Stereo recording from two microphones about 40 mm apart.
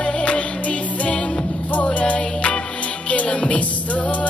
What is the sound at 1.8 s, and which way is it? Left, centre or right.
Music, left.